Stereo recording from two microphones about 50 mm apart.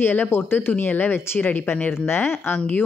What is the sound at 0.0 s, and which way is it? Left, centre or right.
Speech, left.